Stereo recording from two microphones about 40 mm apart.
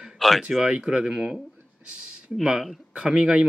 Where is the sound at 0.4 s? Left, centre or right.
Centre.